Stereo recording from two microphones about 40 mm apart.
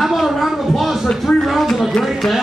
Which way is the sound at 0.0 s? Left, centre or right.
Centre.